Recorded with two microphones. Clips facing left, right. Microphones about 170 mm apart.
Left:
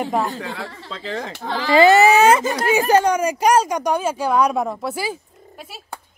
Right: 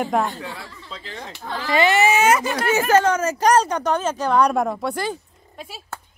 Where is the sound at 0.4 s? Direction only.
85° left.